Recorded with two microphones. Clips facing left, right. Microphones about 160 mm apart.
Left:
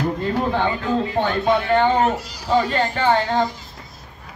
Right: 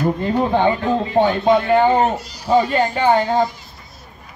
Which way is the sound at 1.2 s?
10° right (ahead or behind).